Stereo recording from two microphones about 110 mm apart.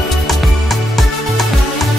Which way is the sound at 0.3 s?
Centre (ahead or behind).